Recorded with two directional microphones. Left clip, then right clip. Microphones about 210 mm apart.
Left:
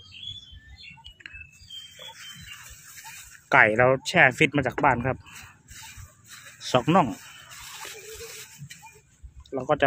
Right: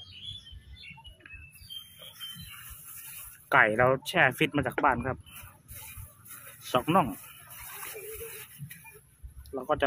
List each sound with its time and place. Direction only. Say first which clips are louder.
3.4 s speech: left 4 dB; 30° left (ahead or behind)
6.6 s speech: left 4 dB; 30° left (ahead or behind)
9.5 s speech: left 5 dB; 30° left (ahead or behind)